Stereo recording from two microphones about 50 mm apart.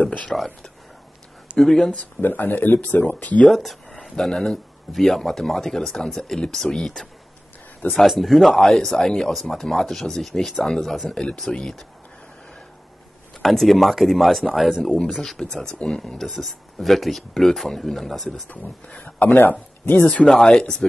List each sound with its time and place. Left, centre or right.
0.3 s speech: centre
1.6 s speech: centre
2.2 s speech: left
3.4 s speech: centre
7.9 s speech: centre
13.4 s speech: centre
14.8 s speech: centre
18.5 s speech: left
20.4 s speech: centre